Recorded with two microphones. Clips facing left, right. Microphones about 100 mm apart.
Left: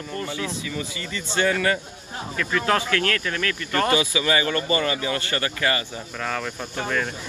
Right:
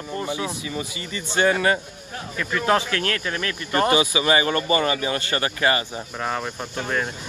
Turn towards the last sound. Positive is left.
turn(degrees=-20)  # may be behind; listen again after turning